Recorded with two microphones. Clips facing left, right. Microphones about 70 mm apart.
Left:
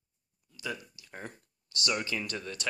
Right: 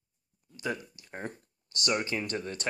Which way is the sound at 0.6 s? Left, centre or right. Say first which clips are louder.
Right 4 dB; right.